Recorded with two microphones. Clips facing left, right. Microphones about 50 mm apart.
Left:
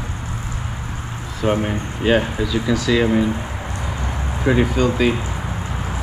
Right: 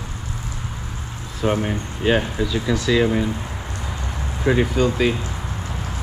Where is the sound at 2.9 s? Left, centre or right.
Centre.